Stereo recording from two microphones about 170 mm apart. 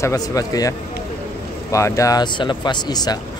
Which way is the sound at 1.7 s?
20° left (ahead or behind).